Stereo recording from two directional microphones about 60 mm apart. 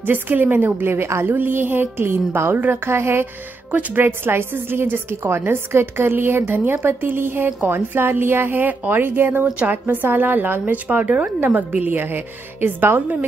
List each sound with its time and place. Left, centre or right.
0.0 s a woman's voice: right
1.2 s a woman's voice: right